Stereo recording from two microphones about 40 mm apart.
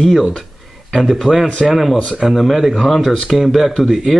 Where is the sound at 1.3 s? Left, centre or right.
Right.